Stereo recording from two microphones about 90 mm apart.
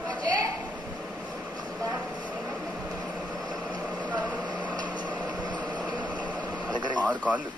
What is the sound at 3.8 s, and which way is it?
Vehicle, 15° right (ahead or behind).